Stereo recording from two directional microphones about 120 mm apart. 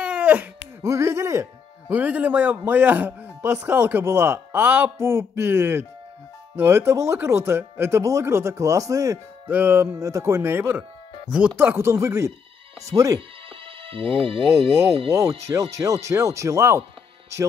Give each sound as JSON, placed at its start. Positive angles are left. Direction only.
{"t": 0.0, "sound": "a sound", "side_deg": -10}
{"t": 0.8, "sound": "speech", "side_deg": -25}
{"t": 2.0, "sound": "speech", "side_deg": -15}
{"t": 9.5, "sound": "speech", "side_deg": -15}
{"t": 13.8, "sound": "speech", "side_deg": -50}
{"t": 15.4, "sound": "speech", "side_deg": -25}